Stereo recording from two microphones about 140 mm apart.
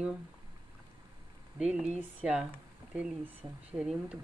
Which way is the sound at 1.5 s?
5° right (ahead or behind).